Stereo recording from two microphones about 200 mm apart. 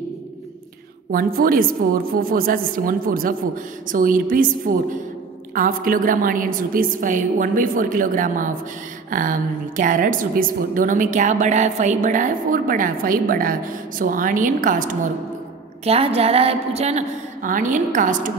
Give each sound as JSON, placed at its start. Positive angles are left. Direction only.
{"t": 1.1, "sound": "a woman's voice", "side_deg": -45}
{"t": 15.8, "sound": "a woman's voice", "side_deg": -30}